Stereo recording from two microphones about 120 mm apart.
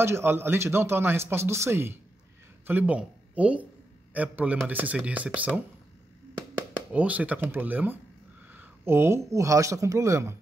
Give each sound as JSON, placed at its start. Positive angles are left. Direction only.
{"t": 0.0, "sound": "speech", "side_deg": -20}
{"t": 6.9, "sound": "speech", "side_deg": -10}
{"t": 8.5, "sound": "a sound", "side_deg": -15}
{"t": 9.3, "sound": "speech", "side_deg": -25}